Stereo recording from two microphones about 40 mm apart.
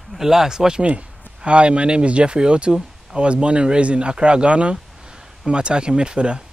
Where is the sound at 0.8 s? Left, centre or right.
Right.